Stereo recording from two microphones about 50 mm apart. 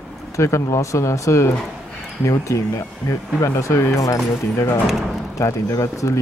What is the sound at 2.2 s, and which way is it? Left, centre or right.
Speech, left.